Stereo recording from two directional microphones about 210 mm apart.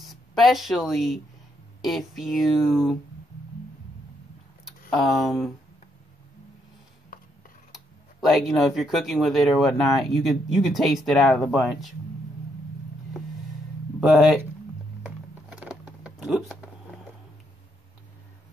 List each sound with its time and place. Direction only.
0.0 s speech: centre (ahead or behind)
4.6 s speech: centre (ahead or behind)
7.1 s a sound: 40° left (ahead or behind)
7.7 s speech: centre (ahead or behind)
14.0 s speech: centre (ahead or behind)
15.0 s typing: 5° right (ahead or behind)